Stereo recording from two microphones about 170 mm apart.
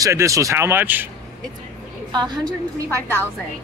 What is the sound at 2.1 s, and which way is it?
Speech, 25° right (ahead or behind).